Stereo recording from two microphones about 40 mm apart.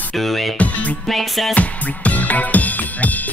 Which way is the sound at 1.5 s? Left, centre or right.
Left.